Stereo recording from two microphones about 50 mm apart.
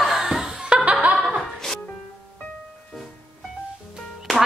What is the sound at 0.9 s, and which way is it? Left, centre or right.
Laughter, right.